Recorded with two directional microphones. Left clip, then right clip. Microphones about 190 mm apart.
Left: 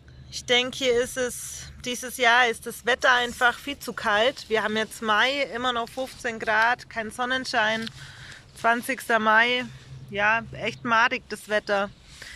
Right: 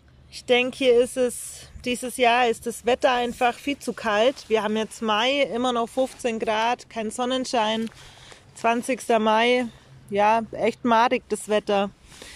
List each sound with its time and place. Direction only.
0.3 s speech: 5° right (ahead or behind)